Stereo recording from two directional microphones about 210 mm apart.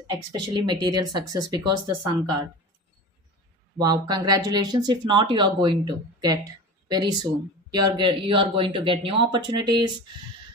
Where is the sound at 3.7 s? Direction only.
20° right (ahead or behind).